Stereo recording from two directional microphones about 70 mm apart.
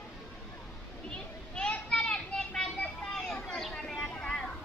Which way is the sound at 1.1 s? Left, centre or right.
Centre.